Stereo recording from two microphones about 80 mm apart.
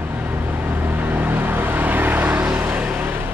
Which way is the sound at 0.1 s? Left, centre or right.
Right.